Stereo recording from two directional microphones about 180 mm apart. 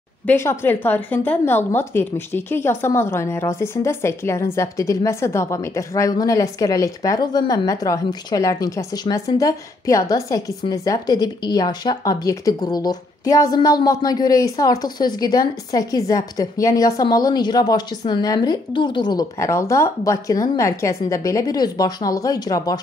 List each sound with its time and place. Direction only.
0.3 s a woman's voice: 15° left (ahead or behind)